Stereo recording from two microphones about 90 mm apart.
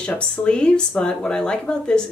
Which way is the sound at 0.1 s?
15° left (ahead or behind).